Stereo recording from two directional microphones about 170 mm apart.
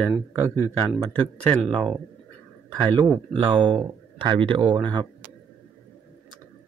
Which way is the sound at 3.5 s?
30° right (ahead or behind).